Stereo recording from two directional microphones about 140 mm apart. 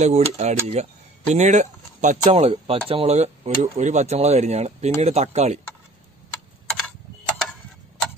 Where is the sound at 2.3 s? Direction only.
45° right (ahead or behind).